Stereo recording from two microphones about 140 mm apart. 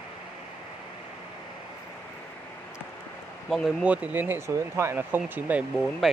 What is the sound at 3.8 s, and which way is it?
Speech, 10° right (ahead or behind).